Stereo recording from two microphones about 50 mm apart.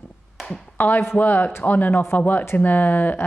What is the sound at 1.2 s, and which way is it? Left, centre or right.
Speech, left.